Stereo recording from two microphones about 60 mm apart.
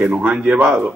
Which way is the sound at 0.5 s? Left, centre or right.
Right.